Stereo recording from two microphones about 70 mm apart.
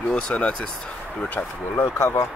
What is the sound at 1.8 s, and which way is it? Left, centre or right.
Speech, left.